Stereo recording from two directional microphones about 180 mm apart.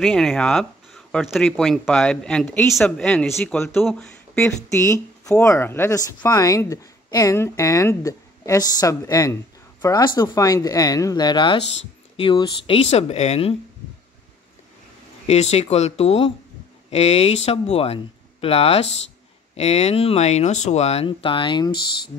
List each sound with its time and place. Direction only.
0.0 s speech: 5° left (ahead or behind)
4.6 s speech: 15° left (ahead or behind); by 13.6 s 35° left (ahead or behind)
15.2 s speech: 35° left (ahead or behind)